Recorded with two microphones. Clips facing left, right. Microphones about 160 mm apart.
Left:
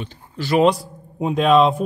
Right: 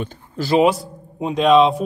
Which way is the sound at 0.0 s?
50° right (ahead or behind).